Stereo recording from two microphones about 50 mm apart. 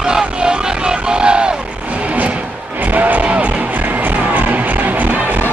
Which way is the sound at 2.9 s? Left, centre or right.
Right.